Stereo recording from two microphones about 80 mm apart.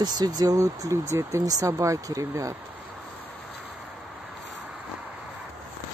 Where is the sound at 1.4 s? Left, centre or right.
Right.